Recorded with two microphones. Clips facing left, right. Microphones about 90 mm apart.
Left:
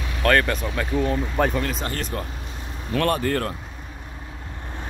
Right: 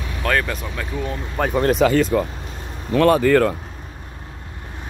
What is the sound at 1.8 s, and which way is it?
Speech, 90° right.